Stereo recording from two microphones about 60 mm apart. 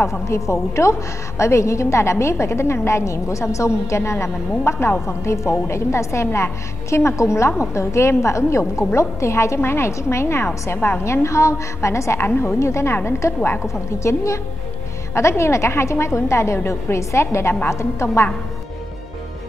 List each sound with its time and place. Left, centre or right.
0.0 s a woman's voice: left